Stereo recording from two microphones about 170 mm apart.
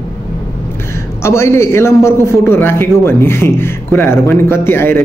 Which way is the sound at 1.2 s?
15° left (ahead or behind).